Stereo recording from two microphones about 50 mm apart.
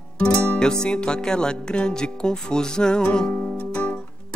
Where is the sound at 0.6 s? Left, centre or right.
Centre.